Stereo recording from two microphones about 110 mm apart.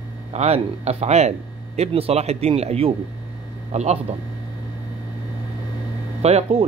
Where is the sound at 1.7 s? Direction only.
65° right (ahead or behind).